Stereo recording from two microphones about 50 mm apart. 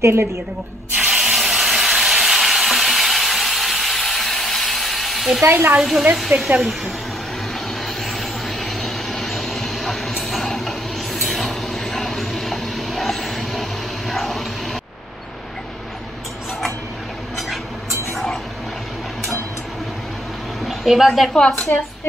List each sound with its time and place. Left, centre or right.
0.0 s a woman's voice: right
0.9 s a sound: centre
5.4 s speech: right
5.8 s speech: centre
6.3 s speech: right
8.0 s vehicle: centre
11.1 s a sound: centre
13.4 s vehicle: centre
20.6 s a woman's voice: centre
21.3 s a woman's voice: centre